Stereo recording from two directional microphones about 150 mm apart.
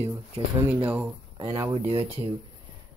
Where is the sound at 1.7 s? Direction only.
40° right (ahead or behind).